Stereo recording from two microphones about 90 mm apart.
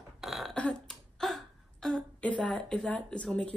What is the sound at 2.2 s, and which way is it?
Speech, 15° left (ahead or behind).